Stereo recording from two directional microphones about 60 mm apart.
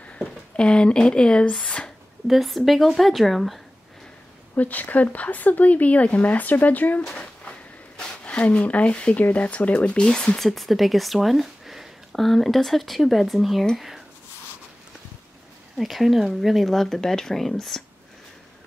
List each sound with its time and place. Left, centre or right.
0.2 s speech: centre
2.2 s speech: centre
4.6 s speech: left
8.0 s speech: centre
15.8 s speech: centre